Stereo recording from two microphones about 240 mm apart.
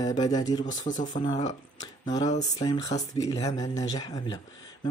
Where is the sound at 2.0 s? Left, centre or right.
Centre.